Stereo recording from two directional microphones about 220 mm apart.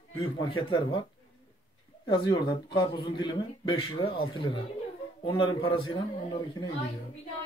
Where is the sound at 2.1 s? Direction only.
20° left (ahead or behind).